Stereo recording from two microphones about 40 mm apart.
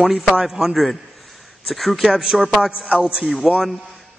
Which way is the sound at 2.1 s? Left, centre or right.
Centre.